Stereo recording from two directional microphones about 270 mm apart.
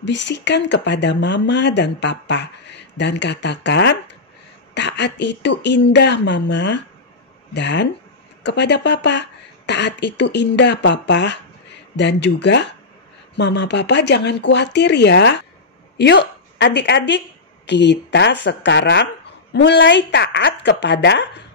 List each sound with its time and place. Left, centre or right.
0.0 s a woman's voice: left